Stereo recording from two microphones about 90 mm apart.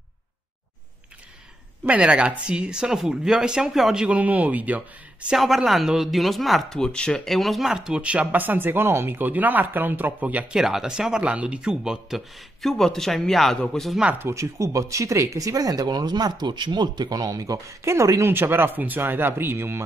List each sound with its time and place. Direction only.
1.9 s speech: 10° right (ahead or behind)
5.4 s speech: centre (ahead or behind)
10.6 s speech: 5° right (ahead or behind)
12.6 s speech: 5° left (ahead or behind)
14.1 s speech: 30° right (ahead or behind)
18.2 s speech: 25° right (ahead or behind)